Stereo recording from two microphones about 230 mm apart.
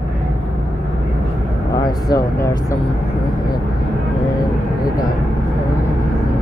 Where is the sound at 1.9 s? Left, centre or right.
Centre.